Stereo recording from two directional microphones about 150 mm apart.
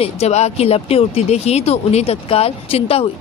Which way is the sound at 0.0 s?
45° left (ahead or behind).